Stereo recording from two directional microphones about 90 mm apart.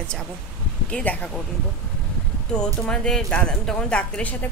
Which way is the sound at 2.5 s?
10° left (ahead or behind).